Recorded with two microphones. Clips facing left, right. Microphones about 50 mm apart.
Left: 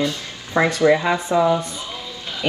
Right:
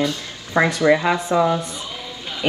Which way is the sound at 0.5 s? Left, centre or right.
Right.